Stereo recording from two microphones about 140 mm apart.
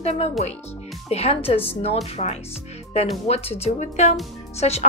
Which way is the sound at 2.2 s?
55° left (ahead or behind).